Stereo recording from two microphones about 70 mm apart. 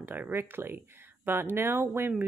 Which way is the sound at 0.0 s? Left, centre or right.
Right.